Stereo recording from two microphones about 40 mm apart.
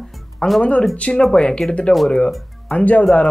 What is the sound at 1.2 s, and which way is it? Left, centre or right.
Speech, left.